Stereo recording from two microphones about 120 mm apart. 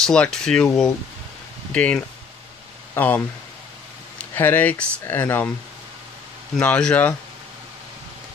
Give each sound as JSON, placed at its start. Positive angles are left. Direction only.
{"t": 0.0, "sound": "speech", "side_deg": 5}
{"t": 1.7, "sound": "speech", "side_deg": 10}
{"t": 2.9, "sound": "a sound", "side_deg": 15}
{"t": 4.4, "sound": "speech", "side_deg": 15}
{"t": 6.5, "sound": "speech", "side_deg": 10}